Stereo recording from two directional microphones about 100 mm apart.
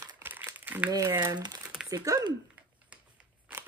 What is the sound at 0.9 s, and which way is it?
Speech, 40° right (ahead or behind).